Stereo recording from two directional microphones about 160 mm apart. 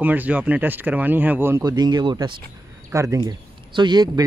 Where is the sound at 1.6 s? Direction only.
25° right (ahead or behind).